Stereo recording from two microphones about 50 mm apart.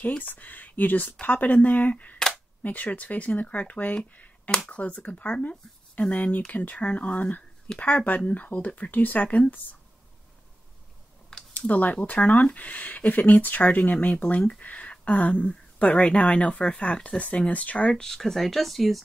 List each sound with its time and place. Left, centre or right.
0.2 s speech: left
11.5 s speech: left
14.6 s a sound: left
15.4 s speech: left
18.0 s speech: centre